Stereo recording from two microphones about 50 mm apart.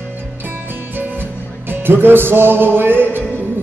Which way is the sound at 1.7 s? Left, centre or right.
Right.